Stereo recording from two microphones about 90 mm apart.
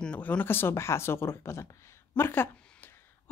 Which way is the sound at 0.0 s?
15° left (ahead or behind).